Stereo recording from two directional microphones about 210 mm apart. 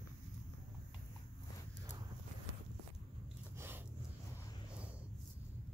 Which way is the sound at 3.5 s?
10° right (ahead or behind).